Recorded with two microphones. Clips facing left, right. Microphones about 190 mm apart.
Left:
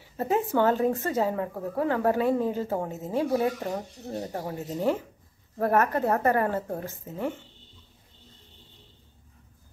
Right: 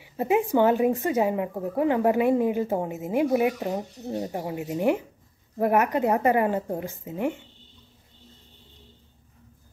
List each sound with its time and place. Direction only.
0.0 s speech: 15° right (ahead or behind)